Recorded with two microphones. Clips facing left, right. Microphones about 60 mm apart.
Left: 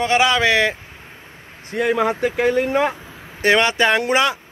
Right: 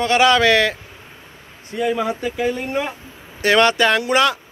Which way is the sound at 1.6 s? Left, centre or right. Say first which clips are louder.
Left 2 dB; left.